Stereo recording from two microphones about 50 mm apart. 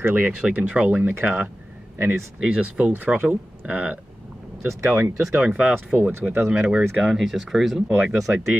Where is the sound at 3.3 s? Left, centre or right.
Right.